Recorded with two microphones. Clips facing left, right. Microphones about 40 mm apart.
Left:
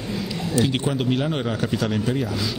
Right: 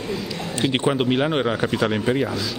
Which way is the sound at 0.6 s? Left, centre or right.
Right.